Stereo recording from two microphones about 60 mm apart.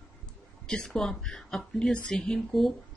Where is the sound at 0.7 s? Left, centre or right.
Centre.